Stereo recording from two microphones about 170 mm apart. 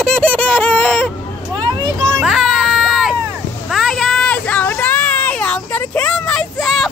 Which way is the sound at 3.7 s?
Centre (ahead or behind).